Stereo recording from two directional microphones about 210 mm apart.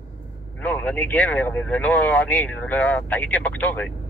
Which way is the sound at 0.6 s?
10° left (ahead or behind).